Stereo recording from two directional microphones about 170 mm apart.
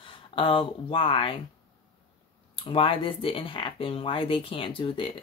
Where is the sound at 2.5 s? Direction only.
30° left (ahead or behind).